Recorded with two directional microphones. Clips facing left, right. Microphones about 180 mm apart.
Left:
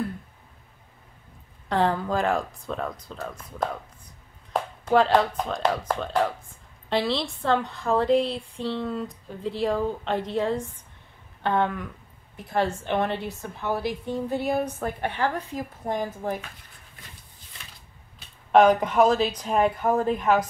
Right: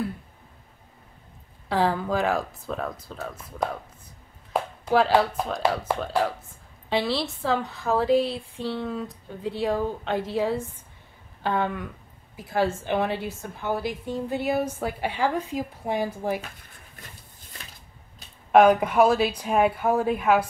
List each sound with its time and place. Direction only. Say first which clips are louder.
1.7 s a woman's voice: even; centre (ahead or behind)
18.5 s speech: right 1 dB; 10° right (ahead or behind)